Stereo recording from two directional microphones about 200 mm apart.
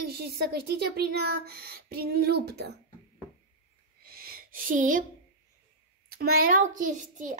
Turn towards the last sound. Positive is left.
turn(degrees=-40)  # may be behind; listen again after turning